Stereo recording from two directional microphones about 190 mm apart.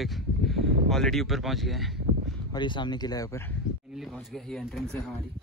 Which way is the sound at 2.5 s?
25° left (ahead or behind).